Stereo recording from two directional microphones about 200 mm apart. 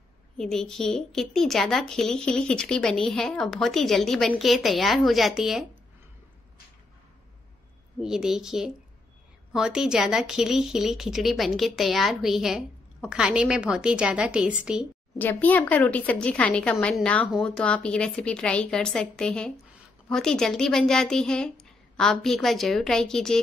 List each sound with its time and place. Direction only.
0.4 s a woman's voice: centre (ahead or behind)
8.0 s a woman's voice: 5° right (ahead or behind)
15.1 s a woman's voice: 10° left (ahead or behind)